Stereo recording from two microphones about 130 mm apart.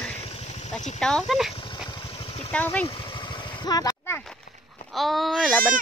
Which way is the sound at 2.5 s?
10° left (ahead or behind).